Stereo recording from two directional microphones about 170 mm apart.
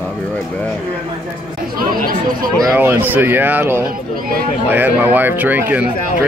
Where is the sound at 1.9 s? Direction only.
55° right (ahead or behind).